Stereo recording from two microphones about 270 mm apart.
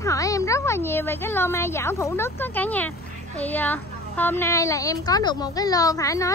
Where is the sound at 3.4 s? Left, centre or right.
Centre.